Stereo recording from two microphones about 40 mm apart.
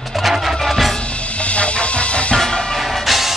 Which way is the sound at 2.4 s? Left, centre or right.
Centre.